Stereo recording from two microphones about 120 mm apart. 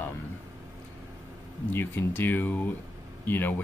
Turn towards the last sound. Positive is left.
turn(degrees=15)  # may be behind; listen again after turning